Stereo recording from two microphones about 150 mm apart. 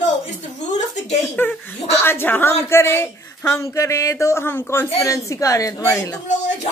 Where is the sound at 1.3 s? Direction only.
10° left (ahead or behind).